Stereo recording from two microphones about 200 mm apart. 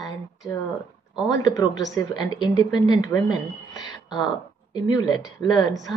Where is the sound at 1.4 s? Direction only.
20° left (ahead or behind).